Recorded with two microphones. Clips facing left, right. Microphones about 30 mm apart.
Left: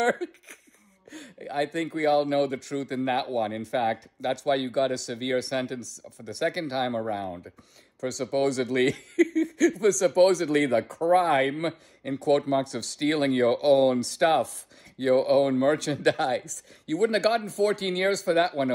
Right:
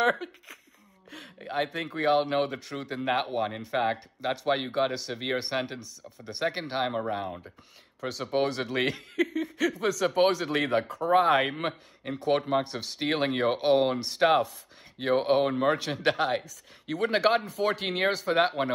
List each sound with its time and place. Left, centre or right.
1.4 s speech: right
2.9 s speech: centre
5.7 s speech: right
6.4 s speech: centre
8.0 s speech: right
9.1 s speech: right
10.9 s speech: right
11.1 s speech: right
18.4 s speech: right